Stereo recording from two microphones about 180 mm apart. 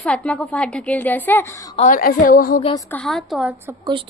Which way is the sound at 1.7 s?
45° left (ahead or behind).